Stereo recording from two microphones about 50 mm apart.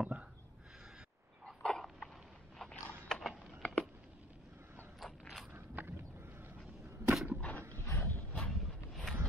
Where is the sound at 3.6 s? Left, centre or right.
Centre.